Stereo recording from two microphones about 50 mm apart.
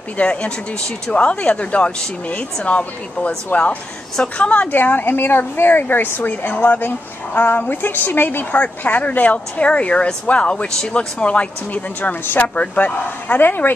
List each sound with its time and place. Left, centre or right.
0.2 s speech: left
3.5 s a woman's voice: left